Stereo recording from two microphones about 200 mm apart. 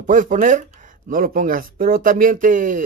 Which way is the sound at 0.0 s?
40° right (ahead or behind).